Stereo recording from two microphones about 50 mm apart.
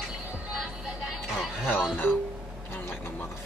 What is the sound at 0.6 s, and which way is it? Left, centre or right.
Music, centre.